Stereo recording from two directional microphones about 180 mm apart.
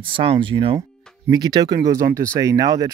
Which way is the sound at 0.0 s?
30° right (ahead or behind).